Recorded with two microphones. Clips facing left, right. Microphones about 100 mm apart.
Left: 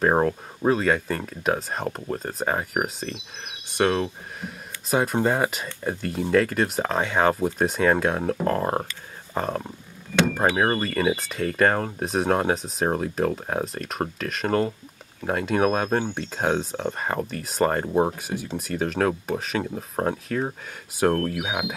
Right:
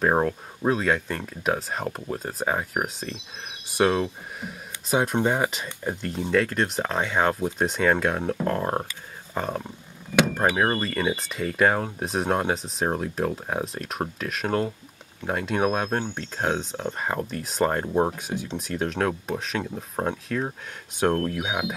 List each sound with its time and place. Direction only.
0.0 s speech: 5° left (ahead or behind)